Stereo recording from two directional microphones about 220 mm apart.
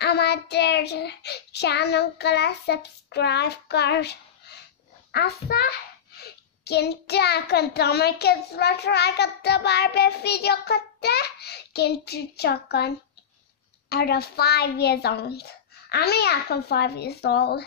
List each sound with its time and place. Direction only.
0.0 s child singing: 50° left (ahead or behind)